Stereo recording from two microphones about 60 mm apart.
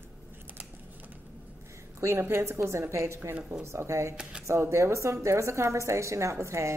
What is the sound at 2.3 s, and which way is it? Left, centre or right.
A woman's voice, right.